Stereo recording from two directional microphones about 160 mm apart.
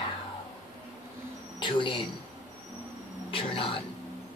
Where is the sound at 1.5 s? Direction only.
30° left (ahead or behind).